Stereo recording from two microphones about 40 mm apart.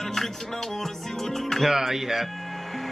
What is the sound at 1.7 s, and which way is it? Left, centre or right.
Speech, centre.